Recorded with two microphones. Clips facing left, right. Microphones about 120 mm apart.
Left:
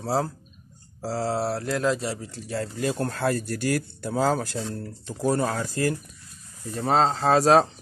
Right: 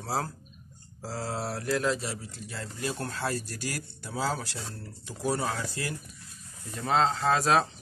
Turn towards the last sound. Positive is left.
turn(degrees=35)  # may be behind; listen again after turning